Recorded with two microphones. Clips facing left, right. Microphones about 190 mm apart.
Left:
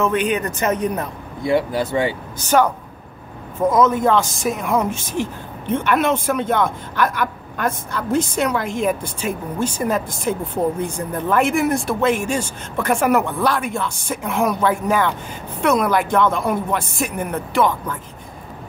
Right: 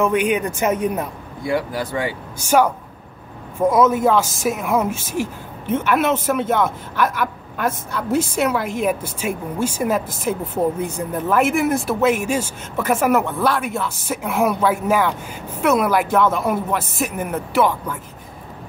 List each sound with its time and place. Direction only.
0.0 s speech: 10° right (ahead or behind)
1.4 s speech: 25° left (ahead or behind)
2.3 s speech: 10° right (ahead or behind)